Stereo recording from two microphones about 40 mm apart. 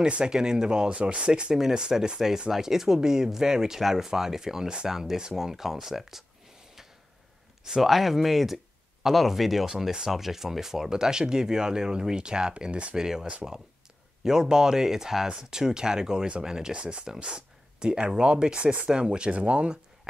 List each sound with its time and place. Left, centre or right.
0.2 s speech: centre
1.6 s speech: centre
7.8 s speech: centre; by 12.9 s right
12.9 s speech: centre; by 19.8 s right